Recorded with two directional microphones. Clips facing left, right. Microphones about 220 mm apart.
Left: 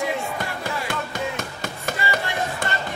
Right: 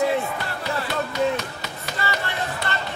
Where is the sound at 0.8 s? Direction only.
50° left (ahead or behind).